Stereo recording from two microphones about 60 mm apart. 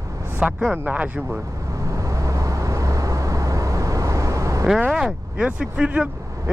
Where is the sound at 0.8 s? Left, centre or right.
Right.